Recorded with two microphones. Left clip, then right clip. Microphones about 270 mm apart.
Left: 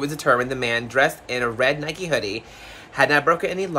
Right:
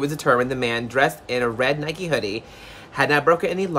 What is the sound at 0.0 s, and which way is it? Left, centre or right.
Speech, centre.